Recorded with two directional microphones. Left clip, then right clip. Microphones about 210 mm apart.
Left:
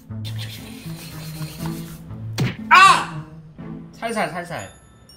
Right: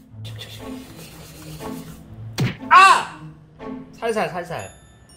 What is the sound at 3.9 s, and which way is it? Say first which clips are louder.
Speech: right 1 dB; 30° right (ahead or behind).